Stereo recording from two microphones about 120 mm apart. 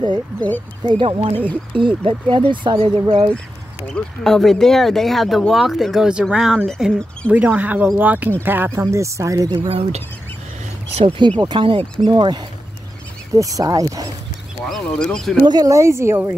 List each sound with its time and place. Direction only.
0.8 s speech: 45° right (ahead or behind)
3.9 s speech: 5° left (ahead or behind)
7.2 s speech: 15° right (ahead or behind)
9.7 s speech: 55° right (ahead or behind)
11.1 s speech: 40° right (ahead or behind)
14.7 s speech: 5° left (ahead or behind)
15.4 s speech: 30° right (ahead or behind)